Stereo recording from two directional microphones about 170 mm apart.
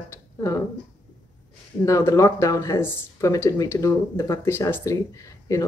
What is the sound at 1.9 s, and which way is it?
Speech, 20° left (ahead or behind).